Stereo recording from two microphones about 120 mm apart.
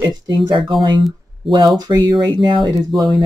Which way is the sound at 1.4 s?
Centre (ahead or behind).